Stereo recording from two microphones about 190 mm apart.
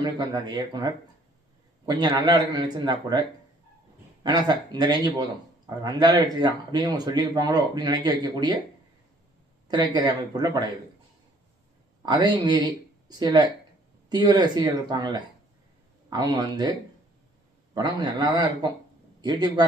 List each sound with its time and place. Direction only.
0.0 s speech: 20° right (ahead or behind)
9.7 s speech: 20° right (ahead or behind)
12.0 s speech: 20° right (ahead or behind)
17.7 s speech: 20° right (ahead or behind)